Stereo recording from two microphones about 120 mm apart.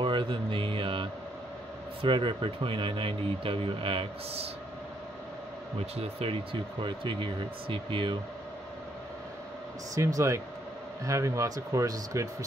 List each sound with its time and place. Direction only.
0.0 s speech: 45° right (ahead or behind)
5.8 s speech: 55° right (ahead or behind)
9.9 s speech: 25° right (ahead or behind)